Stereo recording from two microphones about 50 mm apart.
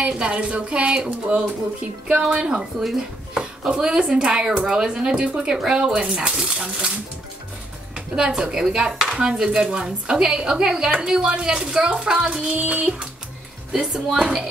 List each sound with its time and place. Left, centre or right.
0.0 s speech: right
7.9 s speech: centre
12.3 s speech: right
13.7 s speech: centre